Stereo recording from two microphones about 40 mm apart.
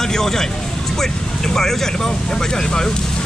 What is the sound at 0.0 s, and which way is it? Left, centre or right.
Speech, centre.